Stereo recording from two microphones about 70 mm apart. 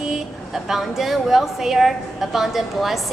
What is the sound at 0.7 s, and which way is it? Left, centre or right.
A woman's voice, centre.